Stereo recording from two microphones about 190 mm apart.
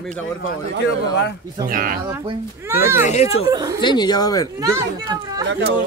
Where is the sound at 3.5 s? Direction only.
20° right (ahead or behind).